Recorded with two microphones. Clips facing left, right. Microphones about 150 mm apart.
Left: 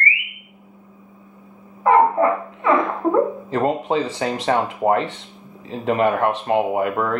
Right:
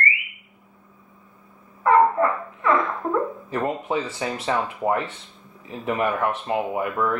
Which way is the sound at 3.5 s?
80° left.